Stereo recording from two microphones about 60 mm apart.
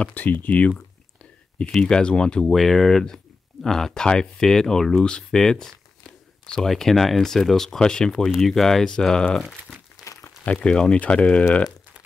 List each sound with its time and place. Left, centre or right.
0.0 s speech: left
2.4 s speech: centre
10.0 s crumpling: centre
10.4 s speech: centre